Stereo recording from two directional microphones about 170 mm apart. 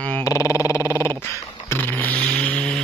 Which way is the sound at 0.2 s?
20° left (ahead or behind).